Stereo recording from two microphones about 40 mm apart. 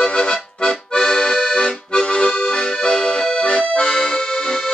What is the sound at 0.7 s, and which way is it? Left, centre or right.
Accordion, centre.